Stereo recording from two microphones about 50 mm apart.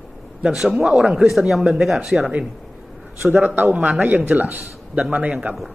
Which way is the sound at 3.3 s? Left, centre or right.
Right.